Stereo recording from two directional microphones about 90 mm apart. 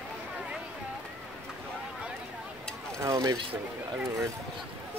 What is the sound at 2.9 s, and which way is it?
Speech, 35° right (ahead or behind).